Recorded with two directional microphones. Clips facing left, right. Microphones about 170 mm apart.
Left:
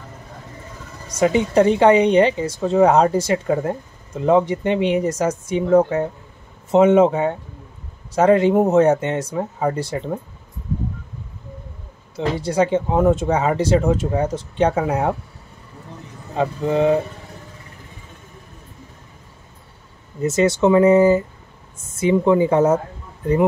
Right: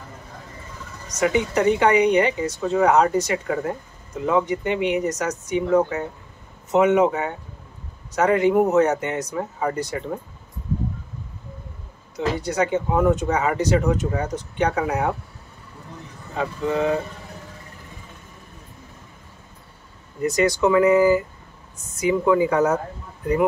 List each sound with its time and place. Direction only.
1.0 s speech: 30° left (ahead or behind)
12.4 s speech: 30° left (ahead or behind)
16.3 s speech: 30° left (ahead or behind)
20.2 s speech: 25° left (ahead or behind)